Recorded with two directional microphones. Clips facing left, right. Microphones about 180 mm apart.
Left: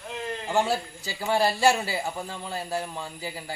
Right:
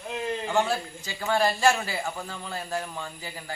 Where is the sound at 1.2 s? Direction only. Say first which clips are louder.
Left 1 dB; 15° left (ahead or behind).